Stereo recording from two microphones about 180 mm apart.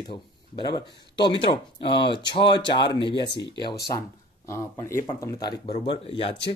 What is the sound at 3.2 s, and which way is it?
Speech, 75° left (ahead or behind).